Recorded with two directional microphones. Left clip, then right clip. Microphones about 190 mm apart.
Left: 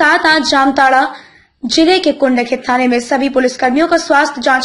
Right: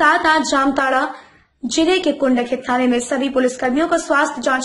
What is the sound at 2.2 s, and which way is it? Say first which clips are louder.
Speech: left 5 dB; 25° left (ahead or behind).